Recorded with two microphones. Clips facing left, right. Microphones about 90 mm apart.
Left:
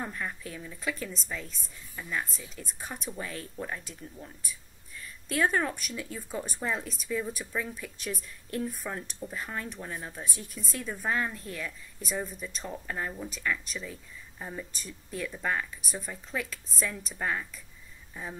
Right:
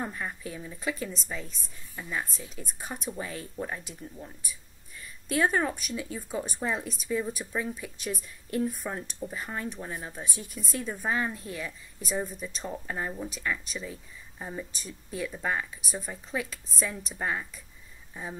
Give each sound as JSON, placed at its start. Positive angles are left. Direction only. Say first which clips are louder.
{"t": 0.0, "sound": "a woman's voice", "louder": "right 1 dB", "side_deg": -10}